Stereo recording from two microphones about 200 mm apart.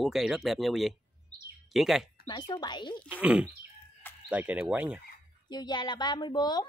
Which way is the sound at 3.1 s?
5° right (ahead or behind).